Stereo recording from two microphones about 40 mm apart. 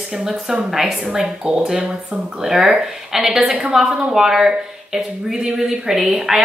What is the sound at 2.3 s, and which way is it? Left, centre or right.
Speech, centre.